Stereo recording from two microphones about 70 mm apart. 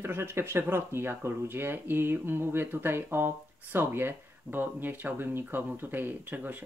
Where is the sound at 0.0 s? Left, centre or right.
Right.